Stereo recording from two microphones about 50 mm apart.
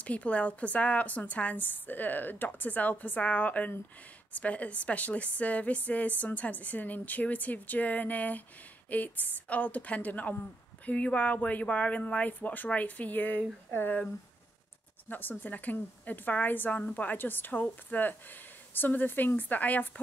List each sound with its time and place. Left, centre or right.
0.0 s a woman's voice: left
13.7 s speech: left
15.0 s a woman's voice: left
16.8 s a woman's voice: left